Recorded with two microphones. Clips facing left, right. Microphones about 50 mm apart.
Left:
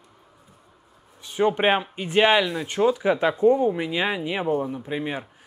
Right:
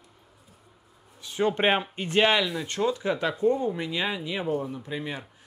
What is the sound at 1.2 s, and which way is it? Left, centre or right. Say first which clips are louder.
Speech: left 3 dB; left.